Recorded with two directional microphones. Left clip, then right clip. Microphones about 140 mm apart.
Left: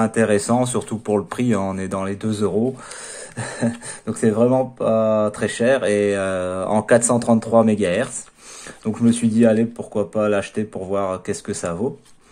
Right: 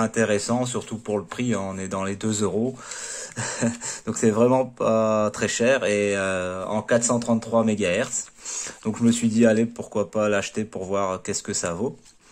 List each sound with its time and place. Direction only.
0.0 s speech: 10° right (ahead or behind)
1.9 s speech: 20° right (ahead or behind)
6.5 s speech: centre (ahead or behind)
7.6 s speech: 15° right (ahead or behind)